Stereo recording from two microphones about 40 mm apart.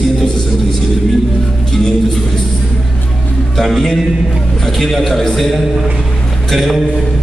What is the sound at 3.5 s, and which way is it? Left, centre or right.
A man's voice, centre.